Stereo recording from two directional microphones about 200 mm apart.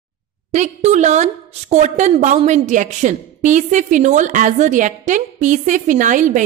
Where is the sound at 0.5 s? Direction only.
35° right (ahead or behind).